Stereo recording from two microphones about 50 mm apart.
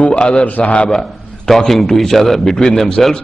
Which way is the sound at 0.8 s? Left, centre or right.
Centre.